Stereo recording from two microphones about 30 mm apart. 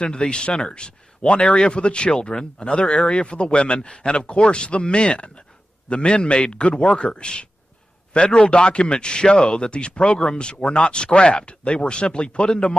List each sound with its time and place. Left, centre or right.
0.3 s a man's voice: left